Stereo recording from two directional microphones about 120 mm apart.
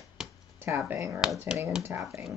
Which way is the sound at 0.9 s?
25° right (ahead or behind).